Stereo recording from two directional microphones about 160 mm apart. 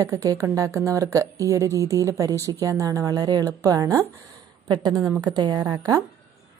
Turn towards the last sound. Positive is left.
turn(degrees=-25)  # may be behind; listen again after turning